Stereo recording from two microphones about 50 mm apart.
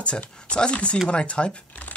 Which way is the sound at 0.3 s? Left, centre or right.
Centre.